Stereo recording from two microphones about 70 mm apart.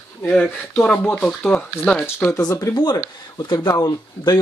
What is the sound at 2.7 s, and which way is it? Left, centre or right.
Speech, left.